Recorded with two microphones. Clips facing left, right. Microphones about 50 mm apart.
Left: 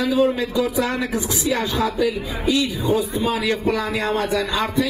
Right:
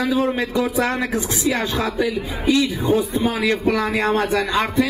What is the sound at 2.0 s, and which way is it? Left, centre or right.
Speech, right.